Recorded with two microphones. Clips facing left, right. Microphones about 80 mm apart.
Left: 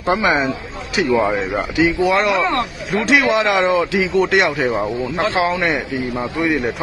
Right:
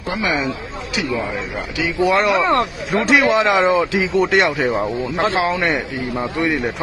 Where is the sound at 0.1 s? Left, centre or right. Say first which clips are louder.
Left 4 dB; left.